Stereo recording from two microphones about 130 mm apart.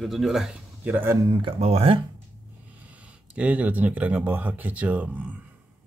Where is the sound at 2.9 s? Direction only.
10° right (ahead or behind).